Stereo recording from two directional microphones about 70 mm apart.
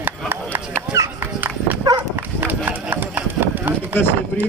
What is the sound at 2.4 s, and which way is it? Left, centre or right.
Clip-clop, right.